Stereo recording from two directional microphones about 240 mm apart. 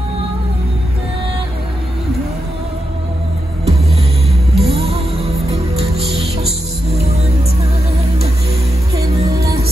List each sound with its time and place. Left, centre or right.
3.6 s music: right
6.9 s music: right
9.0 s music: centre